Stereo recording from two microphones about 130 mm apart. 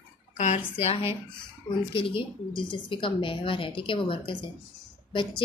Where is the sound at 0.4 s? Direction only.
55° left (ahead or behind).